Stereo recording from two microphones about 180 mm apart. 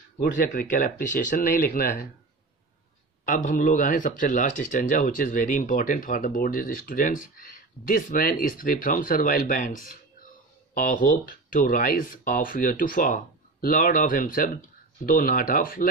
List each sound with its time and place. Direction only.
0.2 s speech: 50° left (ahead or behind)
3.3 s speech: 45° left (ahead or behind)